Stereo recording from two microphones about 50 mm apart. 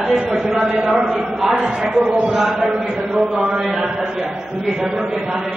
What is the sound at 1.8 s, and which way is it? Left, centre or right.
Speech, right.